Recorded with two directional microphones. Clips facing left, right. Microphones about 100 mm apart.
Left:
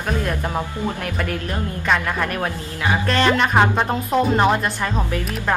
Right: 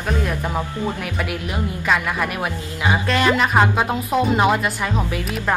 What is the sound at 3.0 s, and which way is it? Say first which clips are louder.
Speech: left 1 dB; 5° right (ahead or behind).